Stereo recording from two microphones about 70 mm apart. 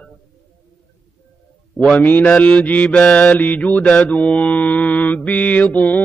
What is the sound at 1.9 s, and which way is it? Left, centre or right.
Mantra, left.